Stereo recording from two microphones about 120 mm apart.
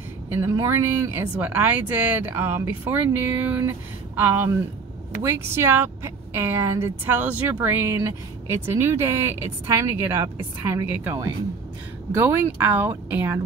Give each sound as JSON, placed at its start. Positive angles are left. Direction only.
{"t": 0.3, "sound": "a woman's voice", "side_deg": -20}